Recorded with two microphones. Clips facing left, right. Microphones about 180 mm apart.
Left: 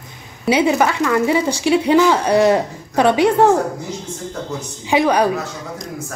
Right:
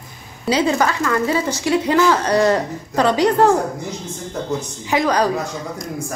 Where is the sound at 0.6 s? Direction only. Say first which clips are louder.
Left 2 dB; 15° left (ahead or behind).